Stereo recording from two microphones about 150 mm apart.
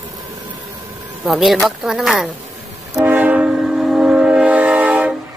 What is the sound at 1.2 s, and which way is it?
Speech, centre (ahead or behind).